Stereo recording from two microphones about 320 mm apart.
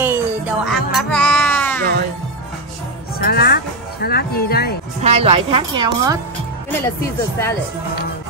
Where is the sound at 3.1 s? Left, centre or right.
Left.